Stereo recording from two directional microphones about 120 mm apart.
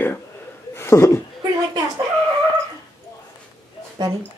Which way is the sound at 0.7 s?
20° left (ahead or behind).